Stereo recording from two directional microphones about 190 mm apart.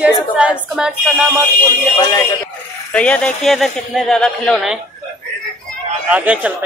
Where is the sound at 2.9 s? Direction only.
5° left (ahead or behind).